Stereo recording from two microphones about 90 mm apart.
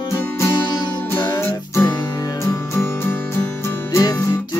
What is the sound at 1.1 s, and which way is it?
Music, 25° left (ahead or behind).